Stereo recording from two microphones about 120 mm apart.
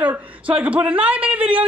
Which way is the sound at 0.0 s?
10° right (ahead or behind).